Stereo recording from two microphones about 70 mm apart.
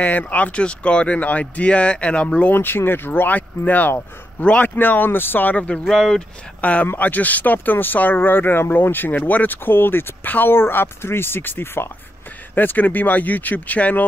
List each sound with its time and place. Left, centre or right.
0.0 s speech: left
2.5 s speech: left
5.9 s speech: centre
6.6 s speech: centre